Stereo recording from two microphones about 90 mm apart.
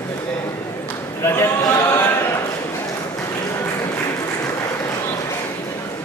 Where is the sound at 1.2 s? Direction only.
30° left (ahead or behind).